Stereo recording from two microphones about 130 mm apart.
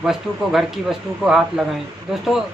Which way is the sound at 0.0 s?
5° right (ahead or behind).